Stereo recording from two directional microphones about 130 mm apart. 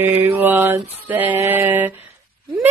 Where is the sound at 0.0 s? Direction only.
15° right (ahead or behind).